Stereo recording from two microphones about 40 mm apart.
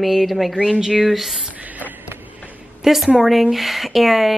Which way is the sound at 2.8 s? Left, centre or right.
Centre.